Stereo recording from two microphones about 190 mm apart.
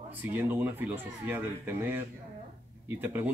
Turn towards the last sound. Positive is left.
turn(degrees=-10)  # may be behind; listen again after turning